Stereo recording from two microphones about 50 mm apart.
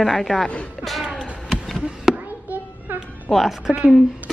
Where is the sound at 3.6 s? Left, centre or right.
Centre.